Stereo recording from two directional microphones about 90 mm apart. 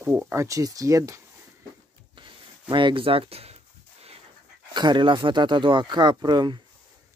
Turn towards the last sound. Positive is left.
turn(degrees=-55)  # may be behind; listen again after turning